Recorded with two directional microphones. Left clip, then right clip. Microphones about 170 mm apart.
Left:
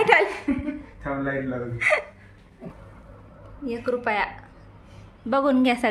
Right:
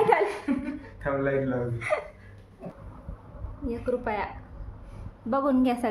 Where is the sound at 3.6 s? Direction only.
10° left (ahead or behind).